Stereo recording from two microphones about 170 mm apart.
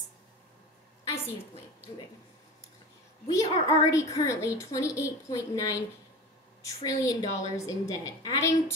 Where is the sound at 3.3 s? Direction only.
20° left (ahead or behind).